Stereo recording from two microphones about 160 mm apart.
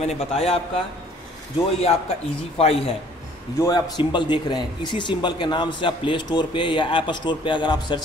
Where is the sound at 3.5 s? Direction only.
25° left (ahead or behind).